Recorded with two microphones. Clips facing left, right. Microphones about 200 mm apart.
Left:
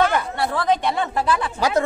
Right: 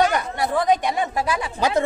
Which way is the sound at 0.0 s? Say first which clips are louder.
Even; 15° right (ahead or behind).